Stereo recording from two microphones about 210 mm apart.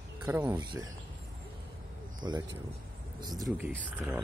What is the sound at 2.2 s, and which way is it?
Speech, 20° right (ahead or behind).